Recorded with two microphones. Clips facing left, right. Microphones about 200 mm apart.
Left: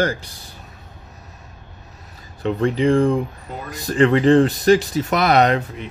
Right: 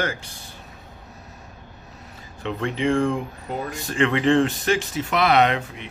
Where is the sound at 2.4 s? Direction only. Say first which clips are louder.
Left 6 dB; 35° left (ahead or behind).